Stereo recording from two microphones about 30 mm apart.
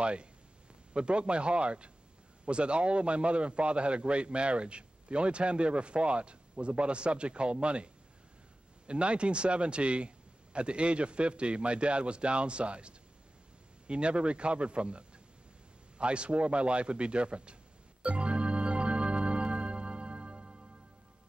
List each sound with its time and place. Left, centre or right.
0.0 s a man's voice: right
18.0 s music: right